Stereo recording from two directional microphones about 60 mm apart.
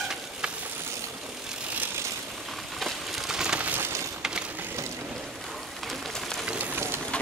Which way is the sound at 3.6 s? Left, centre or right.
Right.